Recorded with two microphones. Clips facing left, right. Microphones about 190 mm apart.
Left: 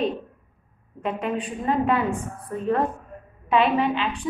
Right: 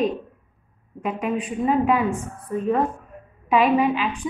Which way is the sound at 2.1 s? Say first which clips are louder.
Even; 70° left (ahead or behind).